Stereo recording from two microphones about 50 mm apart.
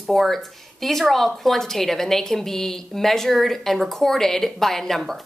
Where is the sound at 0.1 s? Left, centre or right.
Centre.